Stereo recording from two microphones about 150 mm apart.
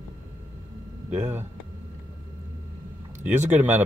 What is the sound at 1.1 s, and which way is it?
Speech, 10° right (ahead or behind).